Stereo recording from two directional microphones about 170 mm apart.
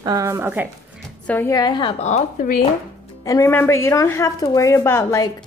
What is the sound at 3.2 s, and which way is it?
A woman's voice, 20° left (ahead or behind).